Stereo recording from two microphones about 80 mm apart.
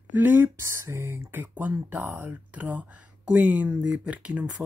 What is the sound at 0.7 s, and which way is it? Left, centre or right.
A woman's voice, right.